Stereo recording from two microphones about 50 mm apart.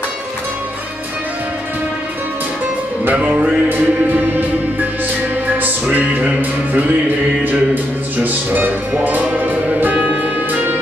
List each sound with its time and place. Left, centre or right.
3.1 s music: right